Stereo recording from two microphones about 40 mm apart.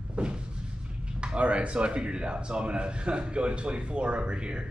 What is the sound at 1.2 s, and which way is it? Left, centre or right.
Speech, right.